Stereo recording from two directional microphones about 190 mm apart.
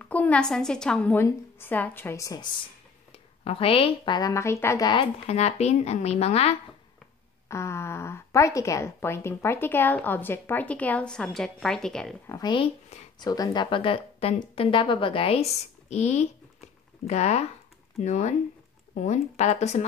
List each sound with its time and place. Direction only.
0.0 s speech: 10° left (ahead or behind)
3.1 s a woman's voice: 30° left (ahead or behind)
4.9 s speech: 35° left (ahead or behind)
7.4 s a woman's voice: 15° left (ahead or behind)
12.3 s speech: 20° left (ahead or behind)